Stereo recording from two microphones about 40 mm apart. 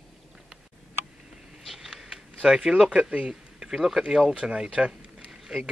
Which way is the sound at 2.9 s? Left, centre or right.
Right.